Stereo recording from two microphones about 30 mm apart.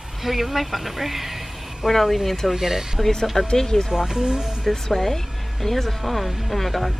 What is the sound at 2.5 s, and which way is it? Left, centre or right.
Speech, centre.